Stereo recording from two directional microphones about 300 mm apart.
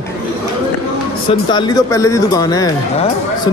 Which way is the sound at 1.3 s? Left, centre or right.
Centre.